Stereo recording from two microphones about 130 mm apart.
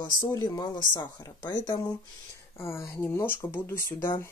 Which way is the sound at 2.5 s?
20° left (ahead or behind).